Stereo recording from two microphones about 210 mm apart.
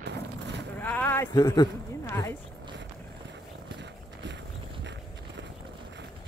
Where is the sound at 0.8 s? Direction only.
10° left (ahead or behind).